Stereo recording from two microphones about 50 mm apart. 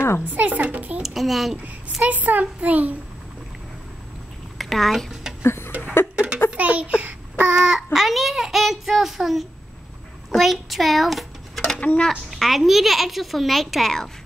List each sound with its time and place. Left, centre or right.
0.2 s a child's voice: right
1.0 s a child's voice: centre
2.0 s a child's voice: right
4.6 s speech: centre
5.4 s a sound: left
6.1 s a sound: right
7.6 s a child's voice: centre